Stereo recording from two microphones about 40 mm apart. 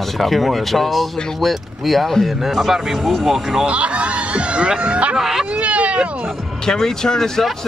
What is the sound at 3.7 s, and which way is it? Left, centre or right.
Speech, right.